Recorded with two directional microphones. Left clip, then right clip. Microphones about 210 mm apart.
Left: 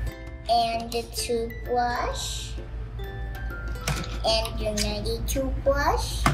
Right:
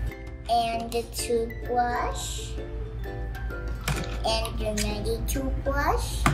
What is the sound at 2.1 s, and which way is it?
Speech, 50° left (ahead or behind).